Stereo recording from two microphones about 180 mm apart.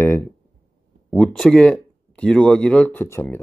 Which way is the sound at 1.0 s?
Centre (ahead or behind).